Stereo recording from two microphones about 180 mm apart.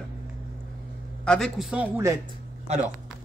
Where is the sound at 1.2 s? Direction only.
5° left (ahead or behind).